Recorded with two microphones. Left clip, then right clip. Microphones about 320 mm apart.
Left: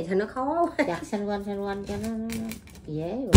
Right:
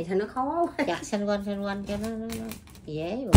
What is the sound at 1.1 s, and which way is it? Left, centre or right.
Speech, right.